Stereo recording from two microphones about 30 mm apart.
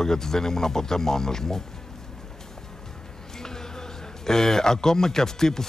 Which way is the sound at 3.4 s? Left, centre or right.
Centre.